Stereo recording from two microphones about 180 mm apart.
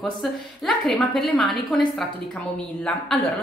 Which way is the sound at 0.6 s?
Centre (ahead or behind).